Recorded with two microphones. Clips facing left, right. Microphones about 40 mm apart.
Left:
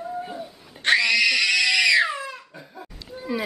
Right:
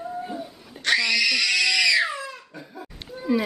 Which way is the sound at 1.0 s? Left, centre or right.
Centre.